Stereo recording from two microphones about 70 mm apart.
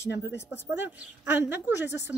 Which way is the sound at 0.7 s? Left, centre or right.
Right.